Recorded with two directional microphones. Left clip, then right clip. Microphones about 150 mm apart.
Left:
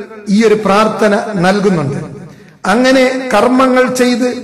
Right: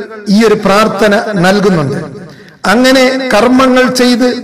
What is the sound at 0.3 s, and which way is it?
A man's voice, 25° right (ahead or behind).